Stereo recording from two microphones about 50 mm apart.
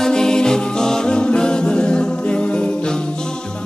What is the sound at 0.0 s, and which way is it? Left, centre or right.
Music, centre.